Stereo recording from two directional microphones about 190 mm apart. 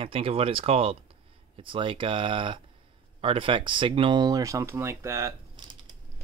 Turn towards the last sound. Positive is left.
turn(degrees=-15)  # may be behind; listen again after turning